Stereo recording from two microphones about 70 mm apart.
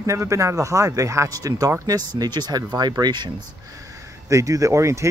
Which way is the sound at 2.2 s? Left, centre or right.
Right.